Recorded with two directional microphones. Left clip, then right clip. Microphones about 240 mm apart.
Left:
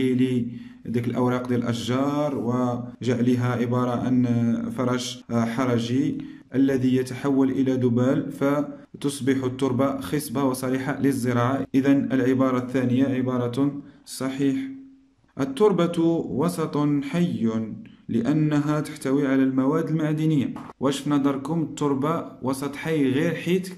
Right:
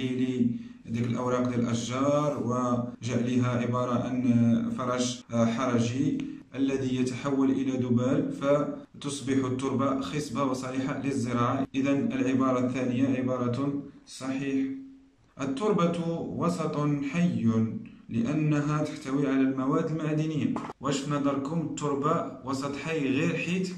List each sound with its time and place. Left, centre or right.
1.0 s a man's voice: left
15.3 s a man's voice: left